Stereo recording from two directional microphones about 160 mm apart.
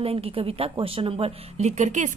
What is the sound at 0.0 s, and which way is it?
A woman's voice, 35° right (ahead or behind).